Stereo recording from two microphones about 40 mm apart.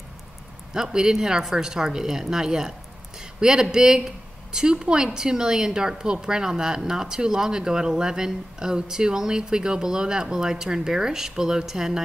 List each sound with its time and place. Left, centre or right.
0.7 s speech: centre